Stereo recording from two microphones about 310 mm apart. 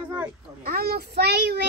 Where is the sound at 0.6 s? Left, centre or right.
Right.